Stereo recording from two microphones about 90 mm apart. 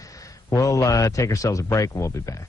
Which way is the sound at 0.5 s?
40° left (ahead or behind).